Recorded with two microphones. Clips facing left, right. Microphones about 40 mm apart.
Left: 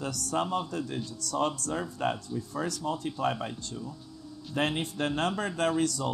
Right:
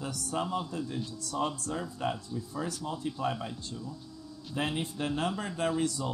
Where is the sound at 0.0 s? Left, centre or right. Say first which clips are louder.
Left 3 dB; left.